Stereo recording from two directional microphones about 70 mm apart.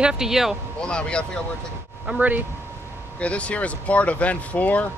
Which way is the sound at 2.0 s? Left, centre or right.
Right.